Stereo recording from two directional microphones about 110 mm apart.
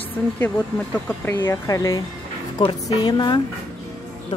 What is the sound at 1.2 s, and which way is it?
A woman's voice, 20° left (ahead or behind).